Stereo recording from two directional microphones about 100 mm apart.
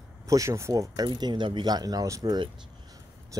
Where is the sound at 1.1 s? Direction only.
50° right (ahead or behind).